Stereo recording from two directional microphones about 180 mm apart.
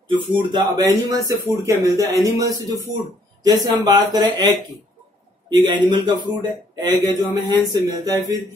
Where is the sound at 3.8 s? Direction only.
20° right (ahead or behind).